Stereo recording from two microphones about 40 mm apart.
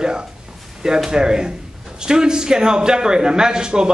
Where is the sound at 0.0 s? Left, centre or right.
Centre.